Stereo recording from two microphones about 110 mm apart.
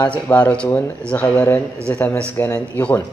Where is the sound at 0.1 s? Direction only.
15° left (ahead or behind).